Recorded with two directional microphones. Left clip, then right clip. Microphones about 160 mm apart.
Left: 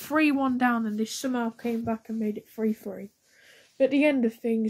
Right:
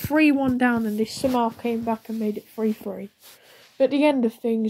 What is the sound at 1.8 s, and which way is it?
Speech, 35° right (ahead or behind).